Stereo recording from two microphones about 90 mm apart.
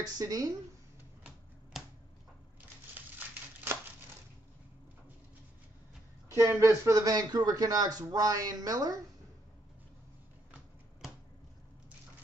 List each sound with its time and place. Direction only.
0.0 s speech: 40° right (ahead or behind)
1.7 s a sound: 5° right (ahead or behind)
2.9 s crumpling: 20° right (ahead or behind)
6.3 s speech: 30° right (ahead or behind)